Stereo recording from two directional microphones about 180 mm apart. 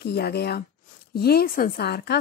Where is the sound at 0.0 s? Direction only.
60° left (ahead or behind).